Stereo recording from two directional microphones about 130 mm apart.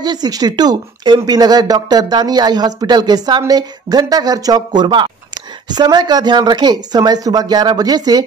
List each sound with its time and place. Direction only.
0.0 s speech: 30° right (ahead or behind)